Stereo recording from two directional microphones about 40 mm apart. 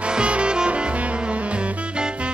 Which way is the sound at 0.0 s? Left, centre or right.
Right.